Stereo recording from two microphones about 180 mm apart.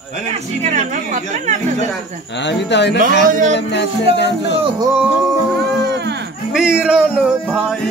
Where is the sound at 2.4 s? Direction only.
75° left (ahead or behind).